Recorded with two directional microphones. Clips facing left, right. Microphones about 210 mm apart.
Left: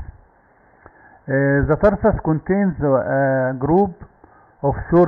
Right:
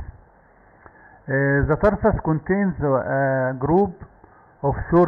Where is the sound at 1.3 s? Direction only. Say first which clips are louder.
Left 3 dB; 45° left (ahead or behind).